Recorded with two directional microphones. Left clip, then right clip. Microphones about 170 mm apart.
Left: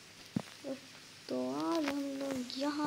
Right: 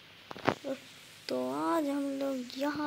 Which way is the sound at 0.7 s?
25° right (ahead or behind).